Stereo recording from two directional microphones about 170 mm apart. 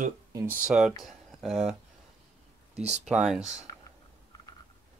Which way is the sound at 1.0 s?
Centre (ahead or behind).